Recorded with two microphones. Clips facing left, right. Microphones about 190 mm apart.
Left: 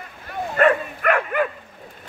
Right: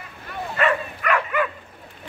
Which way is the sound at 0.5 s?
50° left (ahead or behind).